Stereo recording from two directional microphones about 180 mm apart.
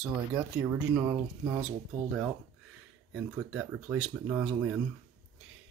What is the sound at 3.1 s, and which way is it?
Speech, 5° right (ahead or behind).